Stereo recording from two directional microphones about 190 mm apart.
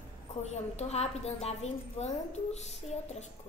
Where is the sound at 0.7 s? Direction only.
35° left (ahead or behind).